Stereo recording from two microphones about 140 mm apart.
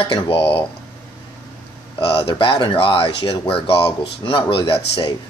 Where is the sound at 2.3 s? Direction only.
35° left (ahead or behind).